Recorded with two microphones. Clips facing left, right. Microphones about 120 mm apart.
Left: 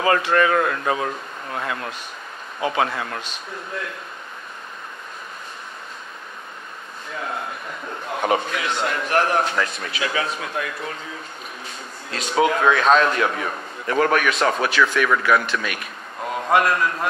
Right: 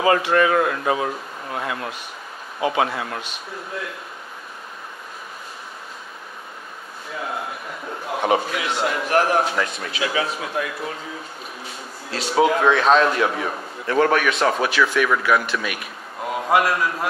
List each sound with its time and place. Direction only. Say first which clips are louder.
0.0 s speech: right 1 dB; 20° right (ahead or behind)
7.2 s a sound: right 1 dB; 5° right (ahead or behind)
8.1 s a man's voice: right 1 dB; 5° right (ahead or behind)
11.6 s speech: right 1 dB; 5° right (ahead or behind)